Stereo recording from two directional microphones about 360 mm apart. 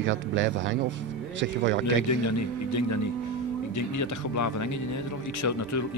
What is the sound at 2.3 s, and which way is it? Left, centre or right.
Speech, left.